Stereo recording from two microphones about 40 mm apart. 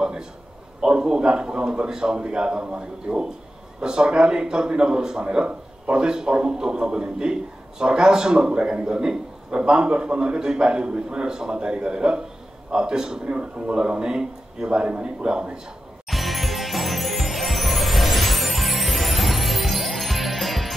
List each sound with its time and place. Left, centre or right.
0.0 s a sound: centre
0.7 s a man's voice: right
16.1 s music: centre